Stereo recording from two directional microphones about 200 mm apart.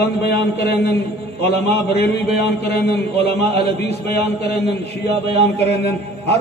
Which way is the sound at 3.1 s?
30° right (ahead or behind).